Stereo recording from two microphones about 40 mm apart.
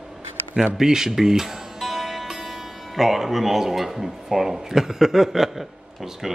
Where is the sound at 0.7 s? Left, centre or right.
Centre.